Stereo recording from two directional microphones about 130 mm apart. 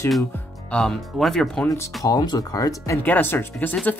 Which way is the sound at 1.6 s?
20° left (ahead or behind).